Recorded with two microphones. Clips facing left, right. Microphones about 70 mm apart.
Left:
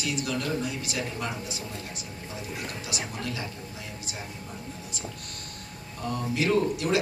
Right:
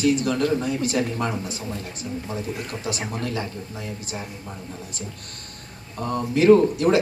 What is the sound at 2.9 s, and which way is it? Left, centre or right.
Speech, right.